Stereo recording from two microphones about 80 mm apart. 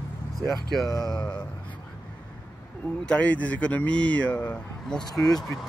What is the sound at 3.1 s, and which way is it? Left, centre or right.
Speech, centre.